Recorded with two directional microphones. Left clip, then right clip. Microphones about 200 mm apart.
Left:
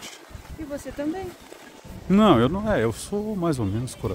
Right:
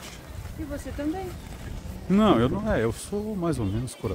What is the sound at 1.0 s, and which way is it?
Speech, 40° left (ahead or behind).